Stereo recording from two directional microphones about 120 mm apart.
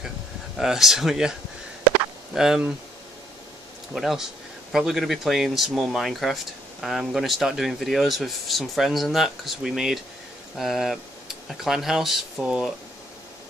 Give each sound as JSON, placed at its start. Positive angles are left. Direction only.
{"t": 0.6, "sound": "speech", "side_deg": -5}
{"t": 2.3, "sound": "speech", "side_deg": -5}
{"t": 3.9, "sound": "speech", "side_deg": 0}